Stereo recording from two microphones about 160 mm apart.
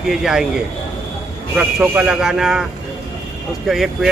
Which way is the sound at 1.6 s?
5° right (ahead or behind).